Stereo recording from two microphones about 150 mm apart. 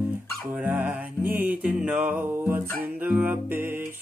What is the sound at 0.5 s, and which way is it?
Dog, 10° right (ahead or behind).